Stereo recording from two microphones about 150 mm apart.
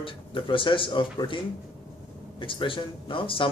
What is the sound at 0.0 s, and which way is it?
A man's voice, 35° left (ahead or behind).